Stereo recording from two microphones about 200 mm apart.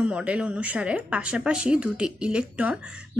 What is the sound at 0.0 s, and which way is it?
Speech, 5° right (ahead or behind).